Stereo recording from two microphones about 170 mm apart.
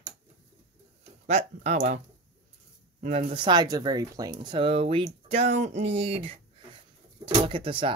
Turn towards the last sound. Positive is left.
turn(degrees=-30)  # may be behind; listen again after turning